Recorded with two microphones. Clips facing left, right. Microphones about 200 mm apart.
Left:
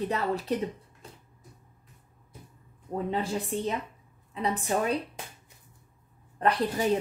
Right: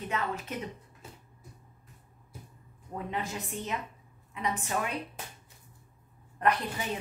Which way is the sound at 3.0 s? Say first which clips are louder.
Left 5 dB; 30° left (ahead or behind).